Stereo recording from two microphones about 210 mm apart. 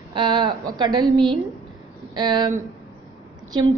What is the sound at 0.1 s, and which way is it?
A woman's voice, 20° right (ahead or behind).